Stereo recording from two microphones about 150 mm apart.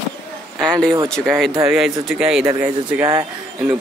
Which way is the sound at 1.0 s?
5° left (ahead or behind).